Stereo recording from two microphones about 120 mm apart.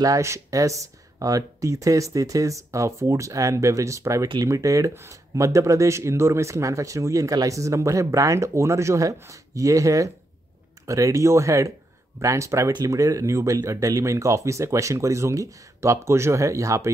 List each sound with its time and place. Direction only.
0.0 s speech: 25° right (ahead or behind)